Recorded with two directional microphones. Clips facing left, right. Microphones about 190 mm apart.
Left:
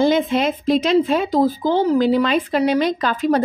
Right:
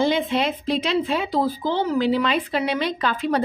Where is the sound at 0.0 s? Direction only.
45° left (ahead or behind).